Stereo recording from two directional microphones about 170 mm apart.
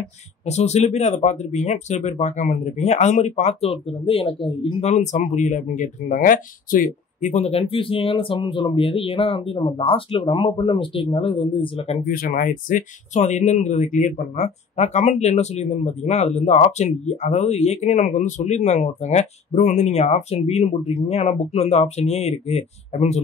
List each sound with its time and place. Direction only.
0.5 s speech: 40° left (ahead or behind)
12.1 s speech: 55° left (ahead or behind); by 23.2 s 40° left (ahead or behind)